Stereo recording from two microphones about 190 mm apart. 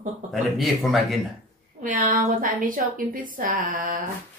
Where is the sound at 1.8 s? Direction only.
45° right (ahead or behind).